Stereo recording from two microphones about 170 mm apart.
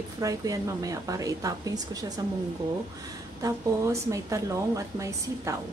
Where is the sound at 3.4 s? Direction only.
20° right (ahead or behind).